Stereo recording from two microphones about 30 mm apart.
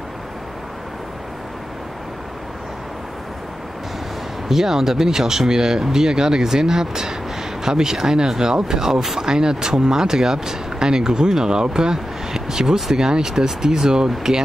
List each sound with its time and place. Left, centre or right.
4.5 s speech: centre